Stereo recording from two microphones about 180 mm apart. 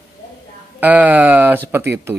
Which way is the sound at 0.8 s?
10° right (ahead or behind).